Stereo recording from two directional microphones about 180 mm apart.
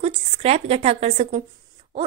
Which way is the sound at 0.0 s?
35° right (ahead or behind).